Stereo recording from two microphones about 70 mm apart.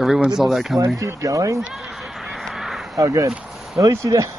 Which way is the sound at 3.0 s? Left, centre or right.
Right.